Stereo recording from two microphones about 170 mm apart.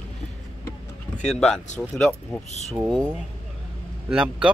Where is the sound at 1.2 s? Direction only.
5° left (ahead or behind).